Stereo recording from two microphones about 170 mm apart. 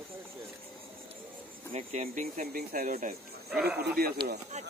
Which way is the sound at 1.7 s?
40° right (ahead or behind).